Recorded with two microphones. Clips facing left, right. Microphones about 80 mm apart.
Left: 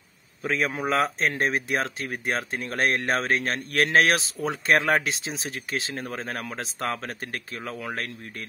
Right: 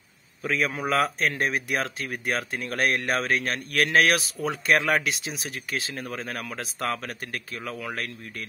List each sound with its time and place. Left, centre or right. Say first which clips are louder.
0.4 s a man's voice: even; left